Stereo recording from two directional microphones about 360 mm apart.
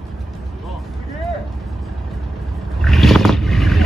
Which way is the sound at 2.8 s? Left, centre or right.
Centre.